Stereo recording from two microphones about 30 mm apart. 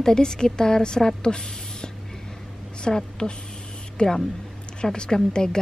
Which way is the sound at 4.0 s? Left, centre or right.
Left.